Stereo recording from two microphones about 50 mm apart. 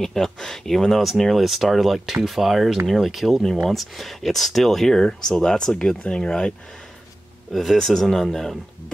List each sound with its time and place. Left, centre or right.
0.0 s speech: centre
7.5 s speech: centre